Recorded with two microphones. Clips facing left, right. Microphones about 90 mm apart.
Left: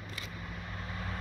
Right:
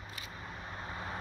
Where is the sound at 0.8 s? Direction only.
20° right (ahead or behind).